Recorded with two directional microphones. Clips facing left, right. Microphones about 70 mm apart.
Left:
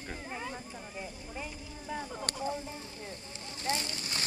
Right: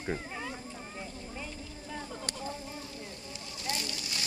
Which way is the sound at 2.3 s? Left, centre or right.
Left.